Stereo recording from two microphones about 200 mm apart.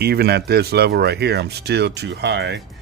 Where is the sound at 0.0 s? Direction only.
50° right (ahead or behind).